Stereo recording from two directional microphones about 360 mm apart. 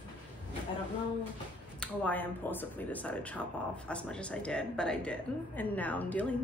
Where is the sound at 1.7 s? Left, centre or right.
Centre.